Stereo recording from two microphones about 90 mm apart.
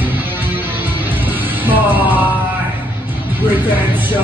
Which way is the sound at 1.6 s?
20° right (ahead or behind).